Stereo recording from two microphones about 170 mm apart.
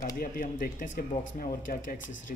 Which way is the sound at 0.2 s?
55° left (ahead or behind).